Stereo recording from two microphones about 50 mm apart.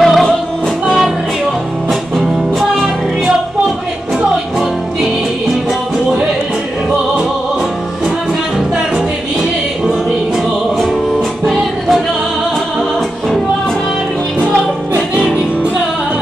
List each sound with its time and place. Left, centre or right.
0.0 s music: centre
9.4 s music: centre
14.4 s music: left
15.1 s music: right